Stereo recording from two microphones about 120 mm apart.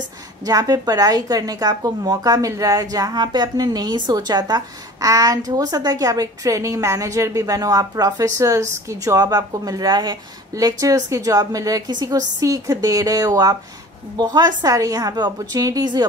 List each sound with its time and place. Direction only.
0.5 s a woman's voice: 30° right (ahead or behind)